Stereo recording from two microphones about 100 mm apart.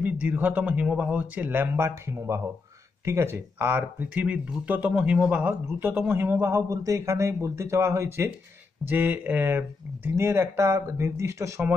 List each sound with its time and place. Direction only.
0.0 s speech: 15° right (ahead or behind)
8.8 s speech: 20° right (ahead or behind)